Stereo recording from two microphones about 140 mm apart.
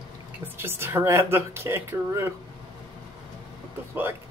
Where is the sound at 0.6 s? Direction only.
15° right (ahead or behind).